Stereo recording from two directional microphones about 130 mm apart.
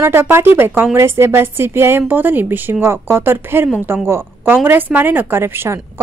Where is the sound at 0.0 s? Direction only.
20° right (ahead or behind).